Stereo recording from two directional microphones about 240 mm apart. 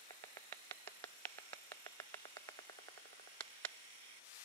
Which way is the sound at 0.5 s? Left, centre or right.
Centre.